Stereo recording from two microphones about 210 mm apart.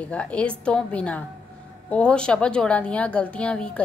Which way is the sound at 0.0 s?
5° left (ahead or behind).